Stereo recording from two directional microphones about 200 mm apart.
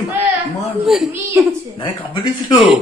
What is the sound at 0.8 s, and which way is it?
Speech, centre (ahead or behind).